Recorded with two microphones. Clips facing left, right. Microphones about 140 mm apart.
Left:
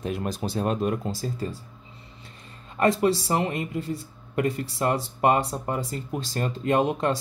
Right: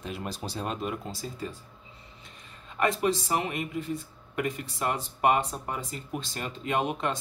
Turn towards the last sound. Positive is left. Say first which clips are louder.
# left 6 dB
turn(degrees=35)  # may be behind; listen again after turning